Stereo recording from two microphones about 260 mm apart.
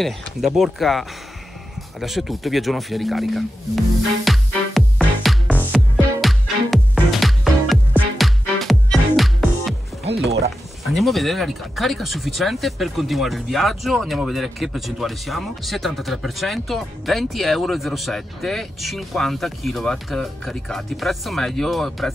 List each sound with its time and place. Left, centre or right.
0.6 s speech: centre
2.0 s music: centre
10.1 s music: right
10.9 s speech: centre